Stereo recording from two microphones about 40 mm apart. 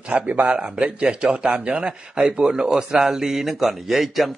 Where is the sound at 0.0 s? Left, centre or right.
Right.